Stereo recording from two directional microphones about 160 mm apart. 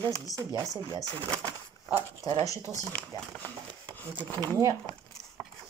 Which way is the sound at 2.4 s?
20° left (ahead or behind).